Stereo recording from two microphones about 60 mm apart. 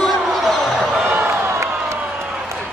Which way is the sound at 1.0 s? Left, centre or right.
Right.